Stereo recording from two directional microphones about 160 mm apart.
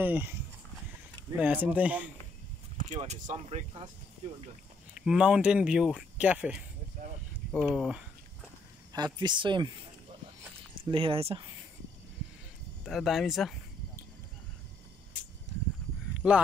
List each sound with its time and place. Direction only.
0.0 s speech: 10° right (ahead or behind)
1.4 s speech: 10° right (ahead or behind)
2.8 s speech: 45° right (ahead or behind)
4.9 s speech: 5° right (ahead or behind)
8.9 s speech: 25° right (ahead or behind)
10.9 s speech: 35° right (ahead or behind)
12.8 s speech: centre (ahead or behind)
16.2 s speech: 5° right (ahead or behind)